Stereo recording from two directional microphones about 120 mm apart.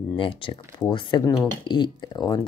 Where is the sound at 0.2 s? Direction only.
45° left (ahead or behind).